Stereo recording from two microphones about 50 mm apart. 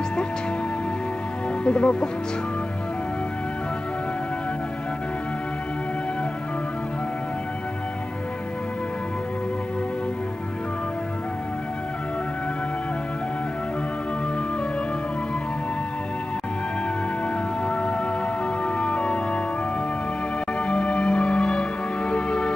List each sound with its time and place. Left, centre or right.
1.6 s speech: centre
17.6 s music: centre
20.5 s music: left